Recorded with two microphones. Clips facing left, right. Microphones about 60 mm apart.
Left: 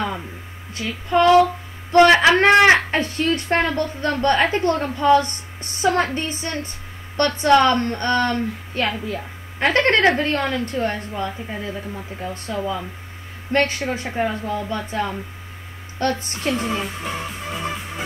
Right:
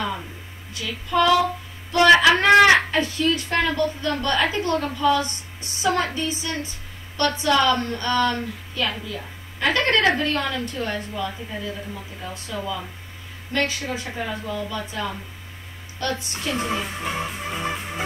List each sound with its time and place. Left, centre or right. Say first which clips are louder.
0.7 s a woman's voice: left 3 dB; left
16.5 s a woman's voice: right 2 dB; centre